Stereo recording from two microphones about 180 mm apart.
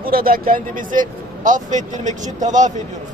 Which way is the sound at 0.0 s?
55° right (ahead or behind).